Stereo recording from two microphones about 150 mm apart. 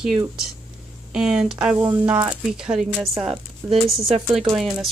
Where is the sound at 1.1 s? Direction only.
5° right (ahead or behind).